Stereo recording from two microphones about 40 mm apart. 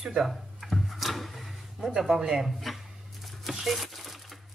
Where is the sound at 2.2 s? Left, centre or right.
Centre.